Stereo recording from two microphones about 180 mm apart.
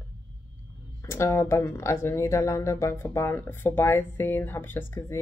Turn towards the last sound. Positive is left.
turn(degrees=15)  # may be behind; listen again after turning